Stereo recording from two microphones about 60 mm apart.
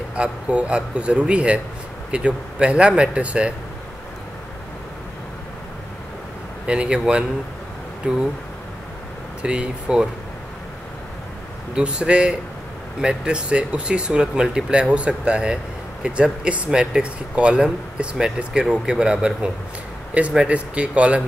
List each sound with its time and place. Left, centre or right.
0.1 s speech: centre
6.6 s speech: centre
9.4 s speech: centre
11.7 s speech: centre